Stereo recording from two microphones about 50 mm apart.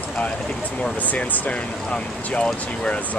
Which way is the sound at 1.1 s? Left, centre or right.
Left.